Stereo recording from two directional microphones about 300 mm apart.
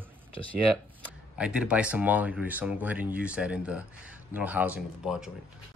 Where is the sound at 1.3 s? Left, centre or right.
Centre.